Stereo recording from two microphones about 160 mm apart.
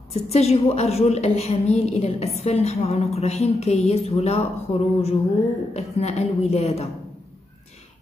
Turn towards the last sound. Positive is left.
turn(degrees=40)  # may be behind; listen again after turning